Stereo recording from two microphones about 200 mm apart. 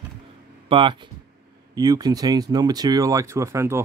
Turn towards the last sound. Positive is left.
turn(degrees=-15)  # may be behind; listen again after turning